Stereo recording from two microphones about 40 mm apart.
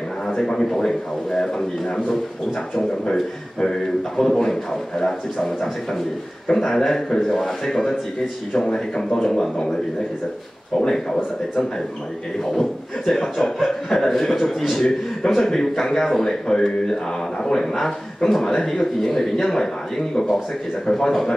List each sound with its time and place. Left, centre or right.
0.5 s speech: centre
4.2 s speech: centre
10.8 s speech: centre
12.4 s speech: centre
14.9 s speech: centre
20.8 s speech: centre